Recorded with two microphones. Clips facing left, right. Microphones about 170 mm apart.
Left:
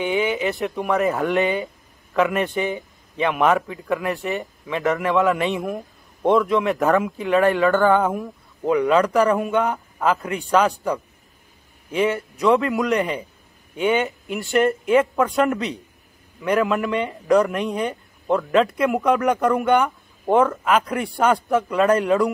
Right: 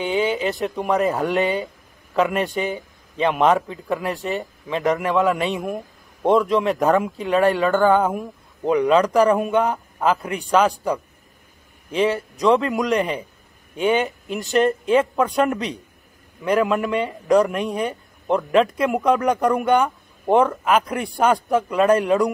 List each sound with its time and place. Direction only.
0.0 s speech: 20° left (ahead or behind)
0.3 s speech: 25° right (ahead or behind)
1.4 s speech: 20° left (ahead or behind)
2.1 s speech: 20° right (ahead or behind)
10.5 s speech: 15° right (ahead or behind)
11.9 s speech: 25° right (ahead or behind)
14.5 s speech: 20° right (ahead or behind)
19.3 s speech: 15° right (ahead or behind)